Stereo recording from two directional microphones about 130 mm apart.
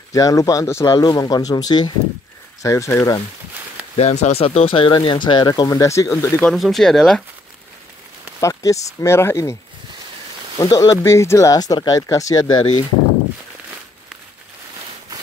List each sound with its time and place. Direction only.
0.1 s speech: 25° left (ahead or behind)
3.9 s speech: 55° left (ahead or behind); by 6.3 s 25° left (ahead or behind)
6.4 s speech: centre (ahead or behind)
8.4 s speech: 25° left (ahead or behind)
10.6 s speech: 25° left (ahead or behind)